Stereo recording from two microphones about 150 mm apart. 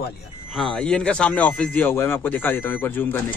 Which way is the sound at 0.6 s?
5° left (ahead or behind).